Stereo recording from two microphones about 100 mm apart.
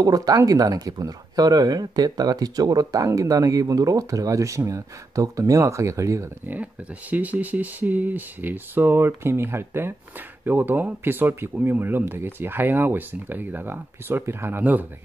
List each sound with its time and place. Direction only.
0.0 s speech: 40° right (ahead or behind)
6.4 s speech: 15° right (ahead or behind)